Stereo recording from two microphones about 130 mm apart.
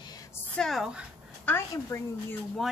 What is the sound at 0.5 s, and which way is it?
Speech, centre (ahead or behind).